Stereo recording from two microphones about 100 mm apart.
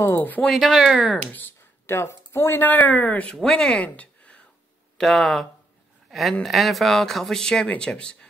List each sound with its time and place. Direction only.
0.0 s speech: 20° left (ahead or behind)
0.5 s speech: centre (ahead or behind)
1.0 s speech: 15° left (ahead or behind)
6.0 s a sound: centre (ahead or behind)
6.4 s speech: centre (ahead or behind)